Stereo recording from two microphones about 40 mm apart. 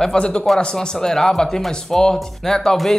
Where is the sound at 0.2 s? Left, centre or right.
Left.